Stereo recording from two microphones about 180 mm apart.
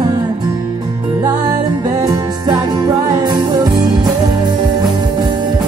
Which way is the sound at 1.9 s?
20° right (ahead or behind).